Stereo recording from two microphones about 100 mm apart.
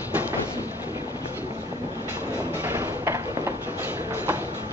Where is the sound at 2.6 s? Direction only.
20° right (ahead or behind).